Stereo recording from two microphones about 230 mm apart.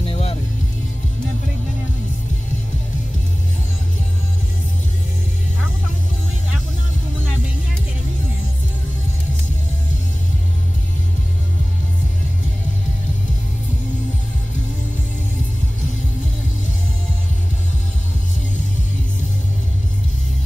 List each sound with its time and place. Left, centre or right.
0.0 s music: left